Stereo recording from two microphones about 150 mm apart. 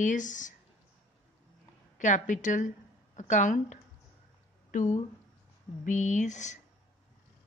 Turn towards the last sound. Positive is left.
turn(degrees=50)  # may be behind; listen again after turning